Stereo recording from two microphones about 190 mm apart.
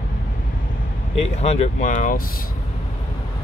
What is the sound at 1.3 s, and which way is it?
Speech, 35° left (ahead or behind).